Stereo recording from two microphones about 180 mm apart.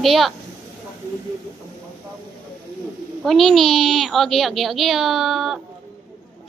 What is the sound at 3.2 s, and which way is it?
A woman's voice, centre (ahead or behind).